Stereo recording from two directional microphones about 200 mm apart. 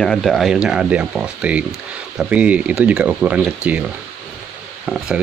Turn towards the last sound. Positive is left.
turn(degrees=-5)  # may be behind; listen again after turning